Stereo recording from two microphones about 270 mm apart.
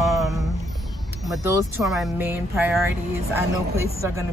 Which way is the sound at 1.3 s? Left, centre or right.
Centre.